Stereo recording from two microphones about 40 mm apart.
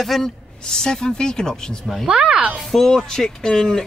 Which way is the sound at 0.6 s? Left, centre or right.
Centre.